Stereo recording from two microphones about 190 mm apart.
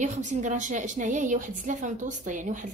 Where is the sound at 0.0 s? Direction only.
40° right (ahead or behind).